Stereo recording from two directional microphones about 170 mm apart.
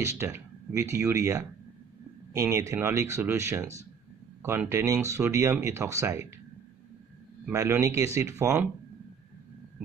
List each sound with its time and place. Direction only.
0.0 s speech: 15° right (ahead or behind)
7.4 s speech: 15° right (ahead or behind)